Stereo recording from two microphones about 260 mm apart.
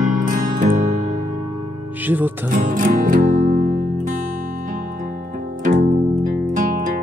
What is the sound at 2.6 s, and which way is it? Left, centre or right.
Music, right.